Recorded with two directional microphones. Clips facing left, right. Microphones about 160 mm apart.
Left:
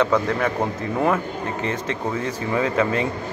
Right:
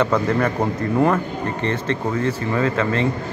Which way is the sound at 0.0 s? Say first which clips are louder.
Right 1 dB; centre (ahead or behind).